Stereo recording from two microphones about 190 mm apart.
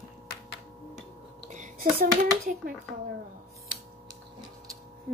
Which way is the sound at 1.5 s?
45° right (ahead or behind).